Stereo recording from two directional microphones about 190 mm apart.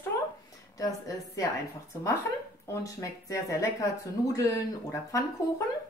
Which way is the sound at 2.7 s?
15° left (ahead or behind).